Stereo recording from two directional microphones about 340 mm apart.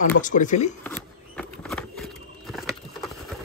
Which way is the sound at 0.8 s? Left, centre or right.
Centre.